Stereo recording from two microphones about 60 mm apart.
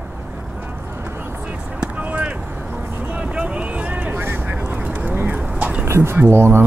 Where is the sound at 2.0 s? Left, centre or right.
Right.